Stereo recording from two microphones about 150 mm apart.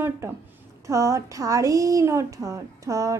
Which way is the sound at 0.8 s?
20° right (ahead or behind).